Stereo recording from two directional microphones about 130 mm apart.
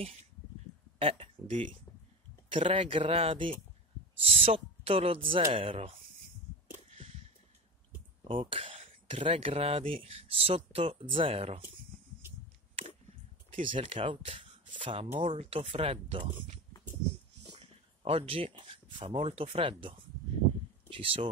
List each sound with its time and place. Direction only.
0.9 s speech: 45° right (ahead or behind)
8.2 s speech: 45° right (ahead or behind)
13.6 s speech: 40° right (ahead or behind)
15.1 s speech: 60° right (ahead or behind)
17.6 s a sound: 45° right (ahead or behind)
19.2 s speech: 50° right (ahead or behind)